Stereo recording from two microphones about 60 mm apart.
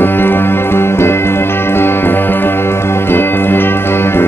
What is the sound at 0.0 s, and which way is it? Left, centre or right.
Music, left.